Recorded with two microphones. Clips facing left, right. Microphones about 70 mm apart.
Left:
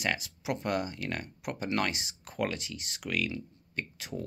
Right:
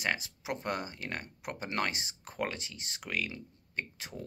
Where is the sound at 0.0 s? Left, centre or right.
Right.